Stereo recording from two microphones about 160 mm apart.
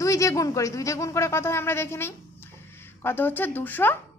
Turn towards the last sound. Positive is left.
turn(degrees=10)  # may be behind; listen again after turning